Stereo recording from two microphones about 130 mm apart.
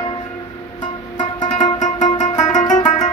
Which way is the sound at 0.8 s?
35° left (ahead or behind).